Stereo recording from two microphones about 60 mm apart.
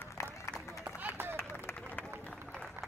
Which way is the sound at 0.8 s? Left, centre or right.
Right.